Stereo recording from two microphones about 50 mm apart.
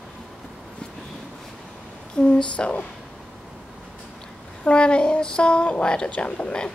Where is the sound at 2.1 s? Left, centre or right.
Left.